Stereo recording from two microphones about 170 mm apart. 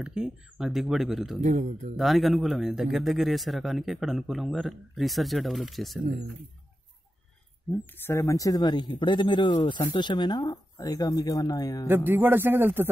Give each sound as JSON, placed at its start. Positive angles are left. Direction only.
{"t": 0.0, "sound": "speech", "side_deg": -5}
{"t": 1.4, "sound": "a man's voice", "side_deg": -45}
{"t": 2.0, "sound": "speech", "side_deg": 0}
{"t": 8.0, "sound": "speech", "side_deg": 15}
{"t": 11.9, "sound": "a man's voice", "side_deg": -10}